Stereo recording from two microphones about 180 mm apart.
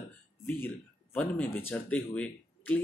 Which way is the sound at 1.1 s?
10° left (ahead or behind).